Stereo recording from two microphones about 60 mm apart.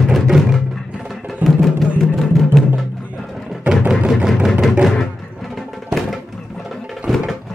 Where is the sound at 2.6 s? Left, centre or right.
Centre.